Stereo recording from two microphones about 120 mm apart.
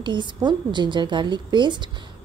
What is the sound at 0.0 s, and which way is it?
A woman's voice, 40° right (ahead or behind).